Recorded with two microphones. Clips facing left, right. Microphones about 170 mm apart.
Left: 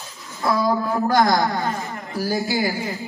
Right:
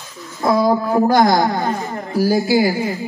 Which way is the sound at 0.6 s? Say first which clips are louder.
Right 6 dB; 20° right (ahead or behind).